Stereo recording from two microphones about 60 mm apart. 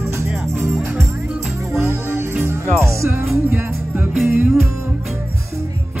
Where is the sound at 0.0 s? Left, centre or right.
Right.